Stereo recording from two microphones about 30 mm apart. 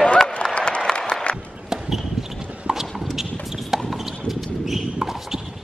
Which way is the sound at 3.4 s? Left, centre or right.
Centre.